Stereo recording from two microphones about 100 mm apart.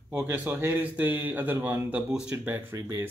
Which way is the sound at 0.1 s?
15° right (ahead or behind).